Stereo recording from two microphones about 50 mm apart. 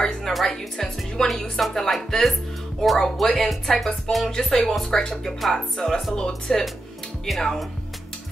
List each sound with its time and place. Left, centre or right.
0.0 s music: centre
0.5 s speech: centre
7.3 s speech: centre